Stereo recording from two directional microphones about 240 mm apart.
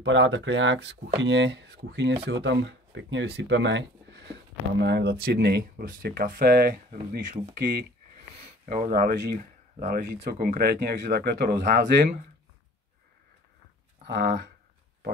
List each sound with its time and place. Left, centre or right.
0.0 s speech: right
8.4 s speech: right
14.0 s speech: right